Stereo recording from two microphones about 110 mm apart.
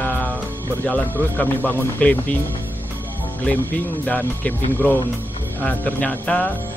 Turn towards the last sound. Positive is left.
turn(degrees=15)  # may be behind; listen again after turning